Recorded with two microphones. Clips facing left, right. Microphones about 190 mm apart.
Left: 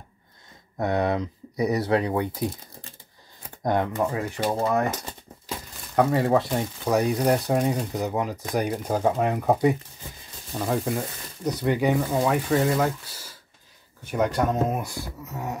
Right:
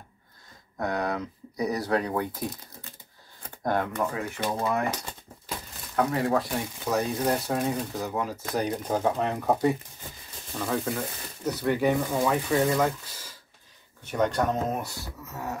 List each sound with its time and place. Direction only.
0.7 s speech: 25° left (ahead or behind)
3.6 s speech: 20° left (ahead or behind)
3.9 s speech: 30° left (ahead or behind)
5.9 s speech: 30° left (ahead or behind)
6.9 s speech: 15° left (ahead or behind)